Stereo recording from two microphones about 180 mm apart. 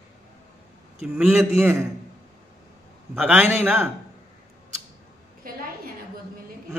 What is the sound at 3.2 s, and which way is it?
Speech, 10° right (ahead or behind).